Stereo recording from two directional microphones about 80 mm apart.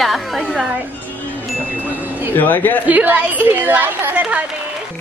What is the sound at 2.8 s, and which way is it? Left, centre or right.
Speech, right.